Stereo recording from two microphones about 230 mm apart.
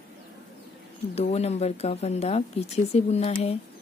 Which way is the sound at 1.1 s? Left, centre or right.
Left.